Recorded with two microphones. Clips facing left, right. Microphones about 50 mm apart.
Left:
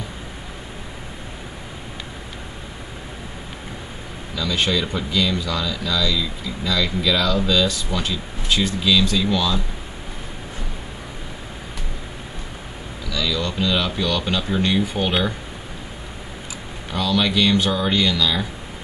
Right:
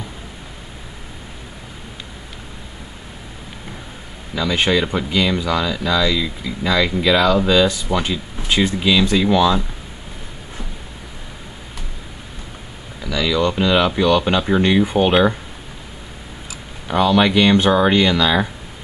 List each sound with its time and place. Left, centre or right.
4.4 s speech: right
13.0 s speech: right
16.8 s speech: right